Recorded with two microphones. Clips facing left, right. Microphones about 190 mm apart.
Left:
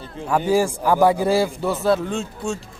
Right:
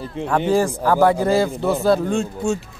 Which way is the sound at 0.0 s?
30° right (ahead or behind).